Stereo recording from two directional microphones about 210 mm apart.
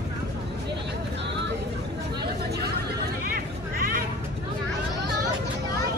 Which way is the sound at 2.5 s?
45° right (ahead or behind).